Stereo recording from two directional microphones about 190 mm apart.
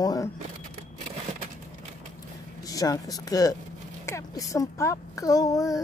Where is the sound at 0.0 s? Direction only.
20° left (ahead or behind).